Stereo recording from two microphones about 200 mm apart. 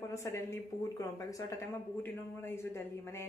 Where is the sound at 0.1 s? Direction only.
15° left (ahead or behind).